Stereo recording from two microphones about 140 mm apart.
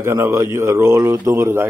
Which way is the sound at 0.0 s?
20° right (ahead or behind).